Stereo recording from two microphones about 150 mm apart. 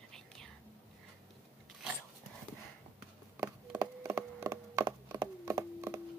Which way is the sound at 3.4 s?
20° right (ahead or behind).